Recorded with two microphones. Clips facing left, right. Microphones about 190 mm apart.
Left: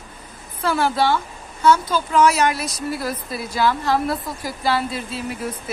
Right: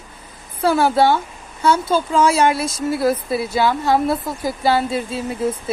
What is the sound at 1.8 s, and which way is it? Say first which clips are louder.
Speech: right 1 dB; 25° right (ahead or behind).